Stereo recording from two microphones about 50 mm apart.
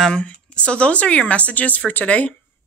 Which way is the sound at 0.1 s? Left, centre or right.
Left.